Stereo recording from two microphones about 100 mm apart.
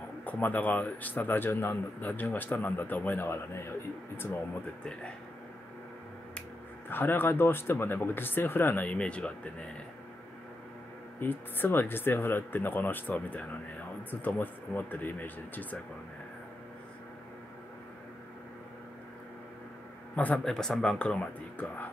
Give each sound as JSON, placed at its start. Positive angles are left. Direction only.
{"t": 0.2, "sound": "speech", "side_deg": 15}
{"t": 6.9, "sound": "speech", "side_deg": 20}
{"t": 11.1, "sound": "speech", "side_deg": 20}
{"t": 20.2, "sound": "speech", "side_deg": 15}
{"t": 20.4, "sound": "speech", "side_deg": 5}